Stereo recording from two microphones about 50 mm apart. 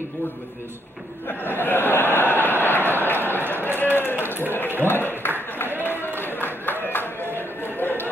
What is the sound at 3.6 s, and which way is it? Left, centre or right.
Run, left.